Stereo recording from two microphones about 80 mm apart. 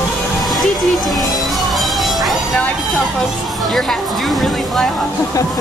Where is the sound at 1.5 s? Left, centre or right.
Centre.